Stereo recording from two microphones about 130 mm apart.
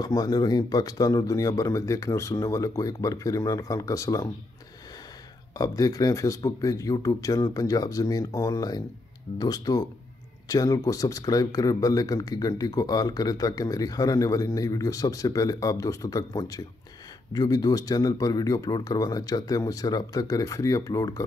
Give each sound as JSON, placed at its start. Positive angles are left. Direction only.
{"t": 0.0, "sound": "speech", "side_deg": 30}
{"t": 5.6, "sound": "speech", "side_deg": 25}